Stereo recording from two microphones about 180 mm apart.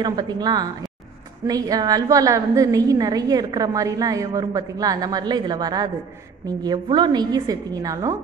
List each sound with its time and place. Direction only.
0.0 s a woman's voice: 20° right (ahead or behind)